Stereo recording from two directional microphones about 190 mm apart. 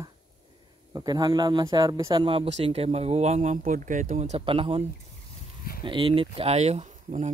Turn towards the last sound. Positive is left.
turn(degrees=-40)  # may be behind; listen again after turning